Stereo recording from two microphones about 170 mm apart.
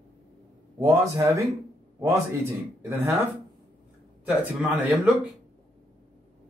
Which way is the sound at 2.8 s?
15° right (ahead or behind).